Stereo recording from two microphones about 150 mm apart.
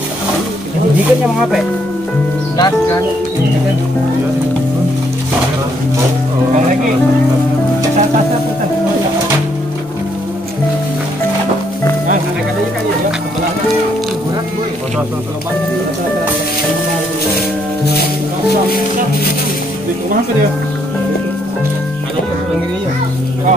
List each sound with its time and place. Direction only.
2.5 s speech: 25° left (ahead or behind)